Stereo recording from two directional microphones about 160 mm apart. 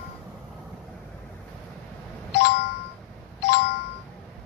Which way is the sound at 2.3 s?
90° left.